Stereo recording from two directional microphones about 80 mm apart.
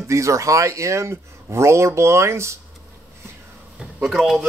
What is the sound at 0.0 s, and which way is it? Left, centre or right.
Speech, right.